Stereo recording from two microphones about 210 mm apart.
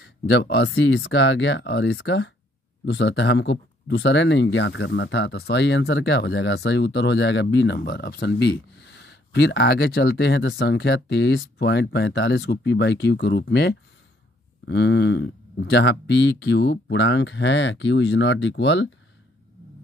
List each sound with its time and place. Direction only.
0.0 s speech: 50° left (ahead or behind)